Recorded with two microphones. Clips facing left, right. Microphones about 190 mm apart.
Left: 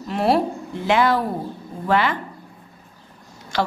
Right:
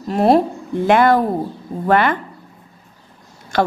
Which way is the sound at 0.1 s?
45° right (ahead or behind).